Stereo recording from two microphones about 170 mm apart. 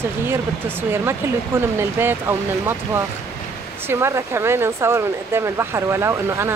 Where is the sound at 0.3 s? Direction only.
15° right (ahead or behind).